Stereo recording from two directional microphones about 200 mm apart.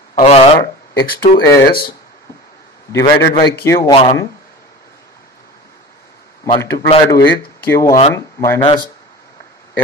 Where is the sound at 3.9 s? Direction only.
30° left (ahead or behind).